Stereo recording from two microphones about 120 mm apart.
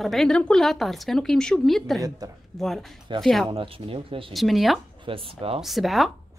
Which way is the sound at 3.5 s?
50° right (ahead or behind).